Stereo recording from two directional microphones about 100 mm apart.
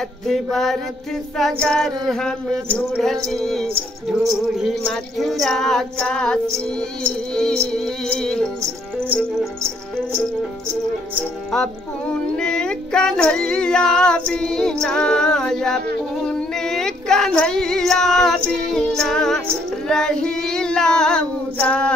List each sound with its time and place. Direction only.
0.3 s a sound: centre (ahead or behind)
7.0 s music: 10° left (ahead or behind)
11.5 s a sound: 5° left (ahead or behind)
16.3 s female singing: 5° left (ahead or behind)
18.5 s music: 5° left (ahead or behind)
19.5 s female singing: 5° left (ahead or behind)